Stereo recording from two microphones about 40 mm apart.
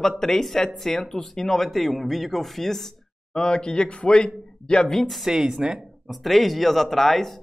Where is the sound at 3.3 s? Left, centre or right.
Centre.